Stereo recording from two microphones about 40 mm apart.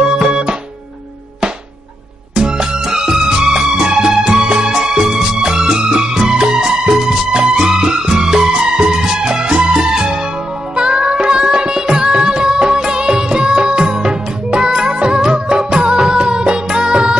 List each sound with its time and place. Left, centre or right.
0.1 s music: right
2.3 s music: right
15.0 s music of bollywood: centre
16.1 s music: right